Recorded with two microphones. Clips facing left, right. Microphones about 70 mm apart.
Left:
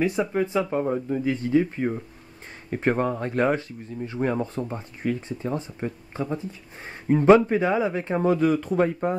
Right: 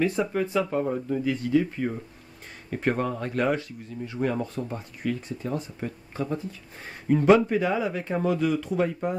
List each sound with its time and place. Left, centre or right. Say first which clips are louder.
0.0 s speech: left 1 dB; centre
1.2 s speech: left 2 dB; left